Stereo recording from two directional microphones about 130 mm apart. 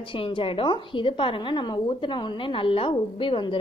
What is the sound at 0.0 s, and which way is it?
A woman's voice, 40° left (ahead or behind).